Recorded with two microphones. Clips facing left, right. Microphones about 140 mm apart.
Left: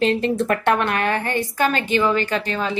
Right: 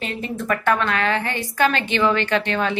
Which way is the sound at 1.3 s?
45° left (ahead or behind).